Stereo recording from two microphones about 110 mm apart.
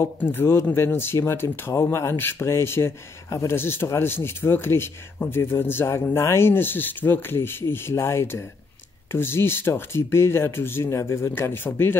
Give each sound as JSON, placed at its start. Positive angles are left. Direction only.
{"t": 0.0, "sound": "speech", "side_deg": 20}